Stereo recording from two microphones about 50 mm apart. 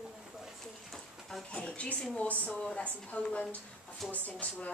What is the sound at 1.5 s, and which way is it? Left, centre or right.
A woman's voice, left.